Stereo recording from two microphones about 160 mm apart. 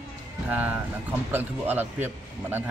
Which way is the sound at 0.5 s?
10° right (ahead or behind).